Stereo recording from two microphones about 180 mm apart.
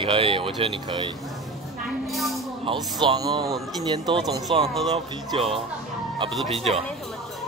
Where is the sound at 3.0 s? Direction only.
25° right (ahead or behind).